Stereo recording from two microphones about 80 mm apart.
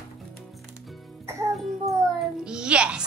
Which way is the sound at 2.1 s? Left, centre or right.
Centre.